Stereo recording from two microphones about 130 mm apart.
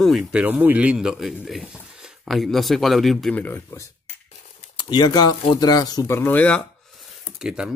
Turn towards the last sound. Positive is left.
turn(degrees=-5)  # may be behind; listen again after turning